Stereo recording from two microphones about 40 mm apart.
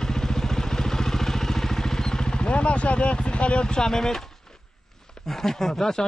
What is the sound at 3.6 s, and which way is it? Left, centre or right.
Speech, centre.